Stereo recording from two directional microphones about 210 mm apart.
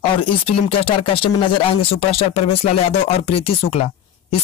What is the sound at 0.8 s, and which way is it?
Speech, 25° left (ahead or behind).